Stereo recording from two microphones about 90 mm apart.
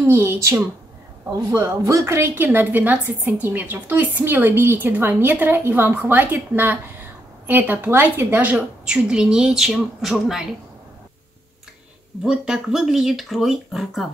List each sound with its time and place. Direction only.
0.0 s a woman's voice: 30° right (ahead or behind); by 10.5 s 5° right (ahead or behind)
12.3 s speech: 5° right (ahead or behind)